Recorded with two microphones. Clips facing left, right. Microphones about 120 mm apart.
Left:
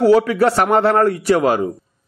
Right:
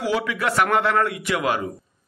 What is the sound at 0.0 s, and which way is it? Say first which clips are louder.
A man's voice: left 11 dB; 40° left (ahead or behind).